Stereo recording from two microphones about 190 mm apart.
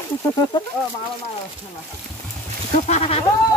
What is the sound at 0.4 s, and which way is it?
Speech, 20° left (ahead or behind).